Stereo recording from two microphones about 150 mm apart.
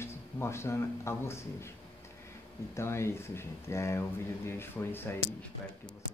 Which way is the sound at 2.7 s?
15° left (ahead or behind).